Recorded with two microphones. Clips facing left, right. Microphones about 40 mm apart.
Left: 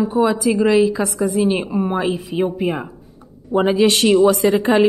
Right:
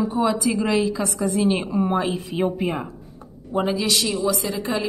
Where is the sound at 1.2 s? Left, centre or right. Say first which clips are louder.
Left 3 dB; centre.